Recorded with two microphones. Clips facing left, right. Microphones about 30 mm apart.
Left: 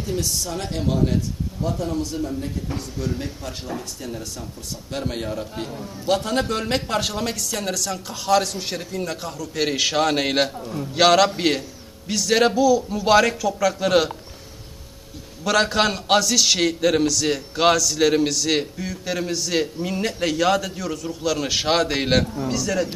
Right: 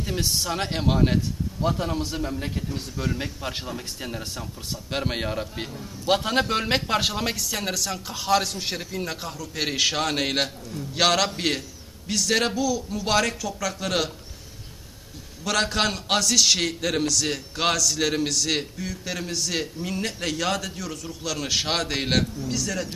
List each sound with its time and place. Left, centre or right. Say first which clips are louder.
0.0 s a man's voice: left 1 dB; right; by 14.1 s centre
15.4 s a man's voice: left 4 dB; centre